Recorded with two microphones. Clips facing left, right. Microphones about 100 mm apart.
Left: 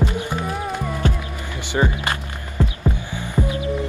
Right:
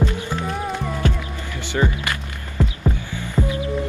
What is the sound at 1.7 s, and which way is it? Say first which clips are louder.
Music: left 1 dB; 25° left (ahead or behind).